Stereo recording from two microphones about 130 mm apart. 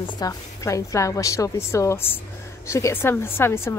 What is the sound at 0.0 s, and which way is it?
A woman's voice, 30° left (ahead or behind).